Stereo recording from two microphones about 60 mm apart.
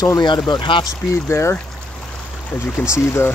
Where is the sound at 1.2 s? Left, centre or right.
Left.